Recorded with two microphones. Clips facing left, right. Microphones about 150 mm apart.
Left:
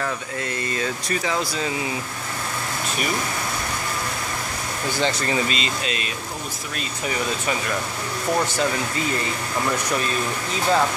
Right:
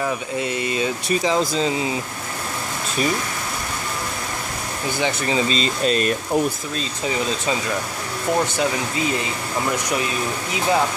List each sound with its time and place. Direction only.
0.0 s speech: 15° right (ahead or behind)
5.0 s speech: 15° right (ahead or behind)
5.5 s speech: 40° right (ahead or behind)
9.7 s speech: 15° right (ahead or behind)